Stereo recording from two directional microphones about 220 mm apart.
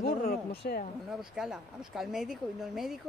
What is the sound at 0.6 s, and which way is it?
Speech, 45° left (ahead or behind).